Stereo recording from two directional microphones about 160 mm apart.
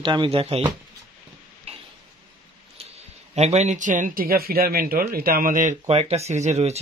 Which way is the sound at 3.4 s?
45° right (ahead or behind).